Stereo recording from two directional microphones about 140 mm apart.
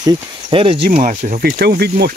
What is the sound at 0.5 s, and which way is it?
Speech, 40° right (ahead or behind).